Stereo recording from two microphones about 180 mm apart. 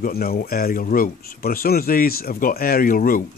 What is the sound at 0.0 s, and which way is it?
Speech, 55° left (ahead or behind).